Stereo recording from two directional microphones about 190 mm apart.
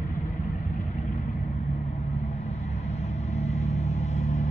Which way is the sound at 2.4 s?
35° left (ahead or behind).